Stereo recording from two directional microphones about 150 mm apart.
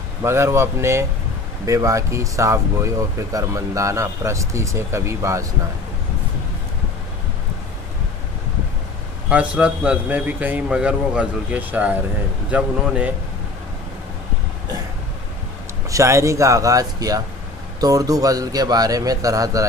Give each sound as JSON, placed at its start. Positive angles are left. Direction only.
{"t": 0.2, "sound": "a man's voice", "side_deg": -20}
{"t": 9.3, "sound": "a man's voice", "side_deg": -10}
{"t": 15.9, "sound": "speech", "side_deg": -20}